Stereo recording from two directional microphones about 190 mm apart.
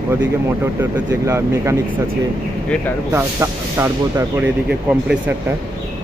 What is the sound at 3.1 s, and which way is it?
Speech, 15° right (ahead or behind).